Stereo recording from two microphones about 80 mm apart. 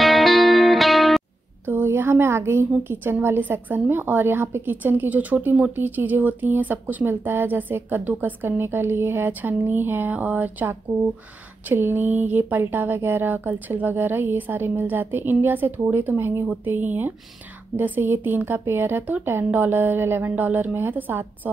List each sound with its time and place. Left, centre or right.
0.0 s music: centre
1.7 s a woman's voice: right